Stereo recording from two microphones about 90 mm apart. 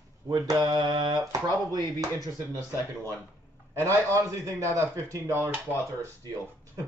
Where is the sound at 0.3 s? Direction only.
45° right (ahead or behind).